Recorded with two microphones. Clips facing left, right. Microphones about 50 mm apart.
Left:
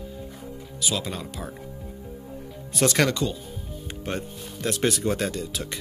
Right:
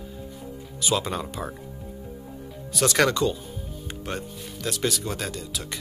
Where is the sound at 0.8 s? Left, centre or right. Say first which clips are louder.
Right 3 dB; centre.